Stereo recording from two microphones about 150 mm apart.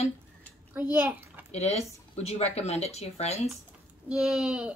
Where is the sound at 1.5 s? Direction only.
45° left (ahead or behind).